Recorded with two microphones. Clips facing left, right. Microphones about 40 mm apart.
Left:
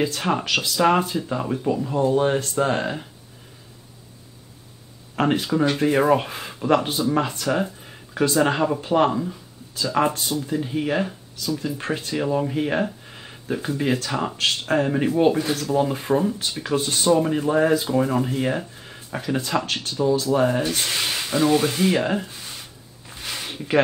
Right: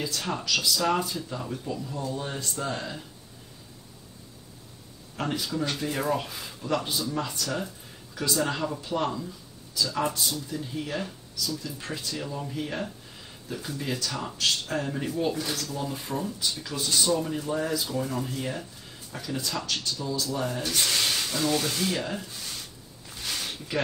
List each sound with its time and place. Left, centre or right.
0.0 s speech: left
5.1 s speech: left
20.6 s speech: left
22.5 s a sound: left